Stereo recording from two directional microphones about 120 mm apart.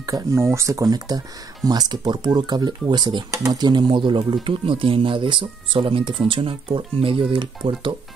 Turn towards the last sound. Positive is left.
turn(degrees=-45)  # may be behind; listen again after turning